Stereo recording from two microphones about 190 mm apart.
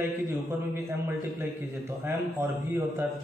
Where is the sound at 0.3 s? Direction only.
10° right (ahead or behind).